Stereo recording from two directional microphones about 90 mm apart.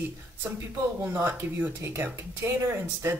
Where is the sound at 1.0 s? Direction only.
25° right (ahead or behind).